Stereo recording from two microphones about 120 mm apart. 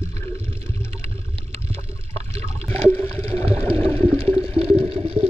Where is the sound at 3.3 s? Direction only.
55° right (ahead or behind).